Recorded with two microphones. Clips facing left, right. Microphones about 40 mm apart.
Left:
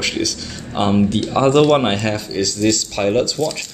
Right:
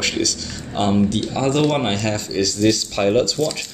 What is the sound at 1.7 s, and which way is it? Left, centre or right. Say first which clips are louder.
Speech: left 4 dB; centre.